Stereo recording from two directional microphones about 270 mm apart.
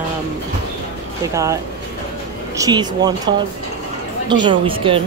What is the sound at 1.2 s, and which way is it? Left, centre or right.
Speech, centre.